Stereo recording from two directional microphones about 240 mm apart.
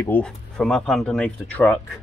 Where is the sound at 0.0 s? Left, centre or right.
Centre.